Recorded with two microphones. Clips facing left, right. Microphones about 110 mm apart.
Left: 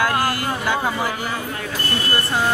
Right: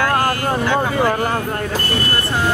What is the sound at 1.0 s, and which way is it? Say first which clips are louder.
Speech: right 7 dB; 55° right (ahead or behind).